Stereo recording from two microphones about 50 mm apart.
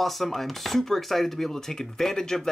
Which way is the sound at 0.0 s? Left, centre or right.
Centre.